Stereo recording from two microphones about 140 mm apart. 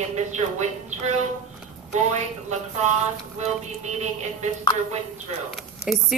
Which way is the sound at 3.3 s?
55° right (ahead or behind).